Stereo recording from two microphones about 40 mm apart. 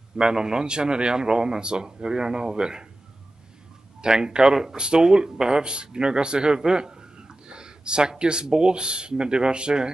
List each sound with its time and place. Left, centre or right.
0.2 s speech: centre
4.0 s speech: right